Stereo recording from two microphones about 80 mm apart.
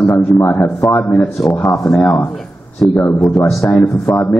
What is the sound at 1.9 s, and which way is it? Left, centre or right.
A man's voice, left.